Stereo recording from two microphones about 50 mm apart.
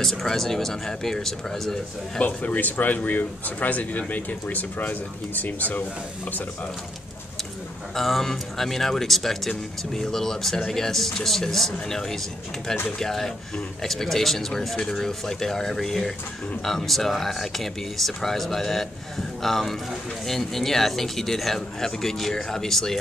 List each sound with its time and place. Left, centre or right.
0.0 s speech: centre
2.1 s speech: left
7.9 s speech: centre